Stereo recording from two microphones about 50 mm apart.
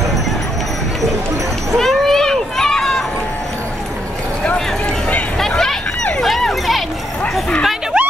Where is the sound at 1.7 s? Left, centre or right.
Centre.